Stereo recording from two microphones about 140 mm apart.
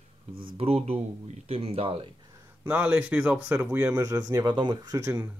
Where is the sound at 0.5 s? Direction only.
45° right (ahead or behind).